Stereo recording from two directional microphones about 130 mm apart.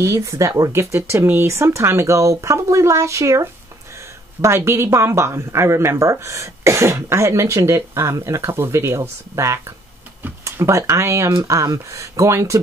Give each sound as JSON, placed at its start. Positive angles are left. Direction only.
{"t": 0.0, "sound": "speech", "side_deg": -25}